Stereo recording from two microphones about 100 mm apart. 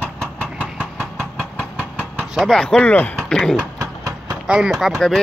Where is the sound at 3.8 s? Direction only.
40° right (ahead or behind).